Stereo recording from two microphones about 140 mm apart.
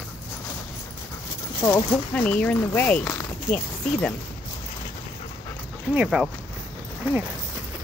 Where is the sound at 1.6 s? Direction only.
25° left (ahead or behind).